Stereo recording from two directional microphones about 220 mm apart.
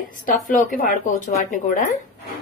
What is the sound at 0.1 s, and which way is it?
A woman's voice, 40° left (ahead or behind).